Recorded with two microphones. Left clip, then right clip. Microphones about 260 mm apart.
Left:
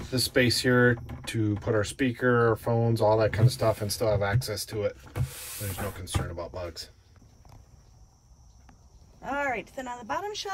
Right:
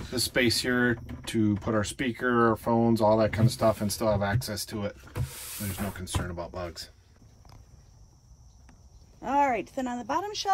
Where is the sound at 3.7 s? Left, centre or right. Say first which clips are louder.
Even; left.